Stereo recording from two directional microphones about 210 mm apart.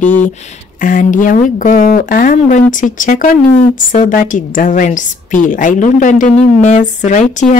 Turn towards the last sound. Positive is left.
turn(degrees=35)  # may be behind; listen again after turning